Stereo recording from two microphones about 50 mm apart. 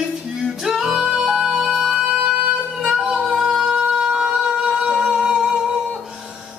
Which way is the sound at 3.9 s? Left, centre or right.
Centre.